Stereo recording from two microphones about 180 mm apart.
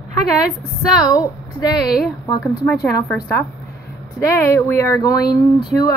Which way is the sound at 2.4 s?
5° left (ahead or behind).